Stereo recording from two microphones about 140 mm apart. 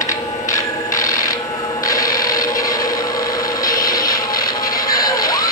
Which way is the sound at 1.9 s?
25° left (ahead or behind).